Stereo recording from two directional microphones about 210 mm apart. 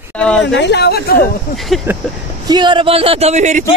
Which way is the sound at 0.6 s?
55° left (ahead or behind).